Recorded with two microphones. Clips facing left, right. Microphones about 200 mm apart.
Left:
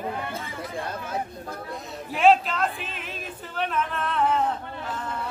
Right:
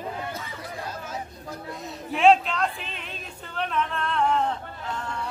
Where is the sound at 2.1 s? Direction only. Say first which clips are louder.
Even; centre (ahead or behind).